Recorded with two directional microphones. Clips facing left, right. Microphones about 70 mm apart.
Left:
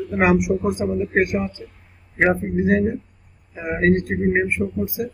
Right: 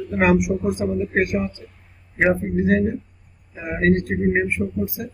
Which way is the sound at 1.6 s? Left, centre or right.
Centre.